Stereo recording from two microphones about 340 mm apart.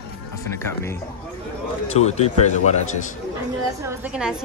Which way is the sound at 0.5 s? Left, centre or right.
Centre.